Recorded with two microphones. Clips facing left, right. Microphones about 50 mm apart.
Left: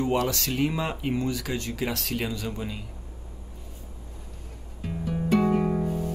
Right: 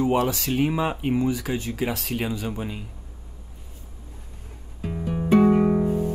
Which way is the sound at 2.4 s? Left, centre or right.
Right.